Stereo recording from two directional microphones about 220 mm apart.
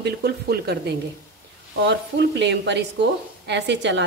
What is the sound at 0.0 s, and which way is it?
Speech, 45° right (ahead or behind).